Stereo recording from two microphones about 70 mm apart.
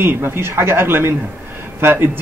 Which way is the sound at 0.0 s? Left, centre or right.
Right.